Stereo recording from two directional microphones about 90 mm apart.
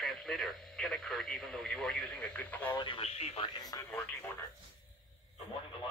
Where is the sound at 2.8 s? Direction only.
80° left.